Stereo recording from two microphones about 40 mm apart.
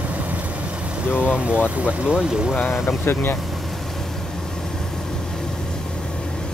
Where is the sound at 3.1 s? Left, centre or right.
Left.